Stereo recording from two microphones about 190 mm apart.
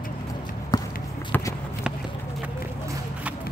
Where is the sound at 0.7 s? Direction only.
20° left (ahead or behind).